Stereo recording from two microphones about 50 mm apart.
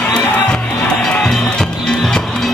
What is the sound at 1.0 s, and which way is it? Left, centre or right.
Music, centre.